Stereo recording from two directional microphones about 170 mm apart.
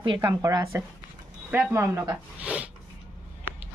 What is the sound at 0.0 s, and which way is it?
A woman's voice, 25° right (ahead or behind).